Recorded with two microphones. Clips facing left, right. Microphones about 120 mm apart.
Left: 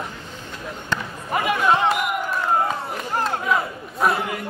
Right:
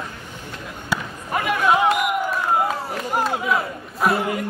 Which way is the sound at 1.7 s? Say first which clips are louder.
Right 3 dB; 5° right (ahead or behind).